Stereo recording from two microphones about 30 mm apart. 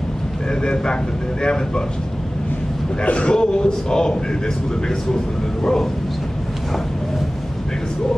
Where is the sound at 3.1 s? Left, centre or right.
Left.